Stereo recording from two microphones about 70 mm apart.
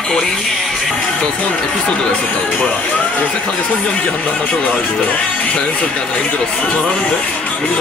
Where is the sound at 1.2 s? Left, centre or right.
Centre.